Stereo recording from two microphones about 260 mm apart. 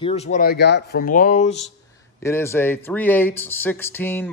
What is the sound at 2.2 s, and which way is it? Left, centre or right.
Speech, centre.